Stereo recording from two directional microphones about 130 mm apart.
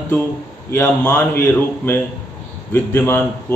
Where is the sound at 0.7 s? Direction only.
25° left (ahead or behind).